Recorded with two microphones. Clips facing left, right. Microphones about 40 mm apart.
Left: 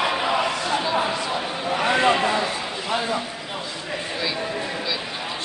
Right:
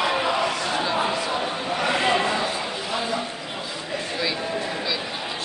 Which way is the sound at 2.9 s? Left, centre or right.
Left.